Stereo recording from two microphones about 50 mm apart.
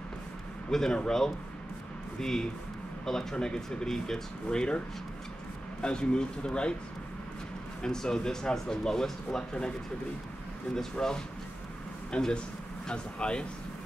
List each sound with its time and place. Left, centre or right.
0.7 s speech: centre
7.8 s speech: centre
10.7 s speech: centre